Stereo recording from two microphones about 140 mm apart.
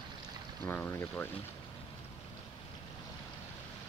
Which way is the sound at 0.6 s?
15° left (ahead or behind).